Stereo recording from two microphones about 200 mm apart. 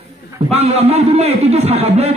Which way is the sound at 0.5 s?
30° right (ahead or behind).